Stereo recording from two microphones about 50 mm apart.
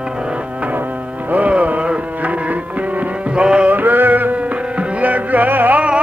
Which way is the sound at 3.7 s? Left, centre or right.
Right.